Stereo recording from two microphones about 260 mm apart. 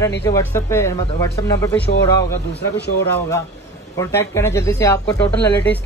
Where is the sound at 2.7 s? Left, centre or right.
Left.